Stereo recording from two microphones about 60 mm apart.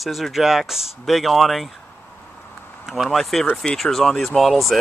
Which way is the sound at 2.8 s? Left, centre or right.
Centre.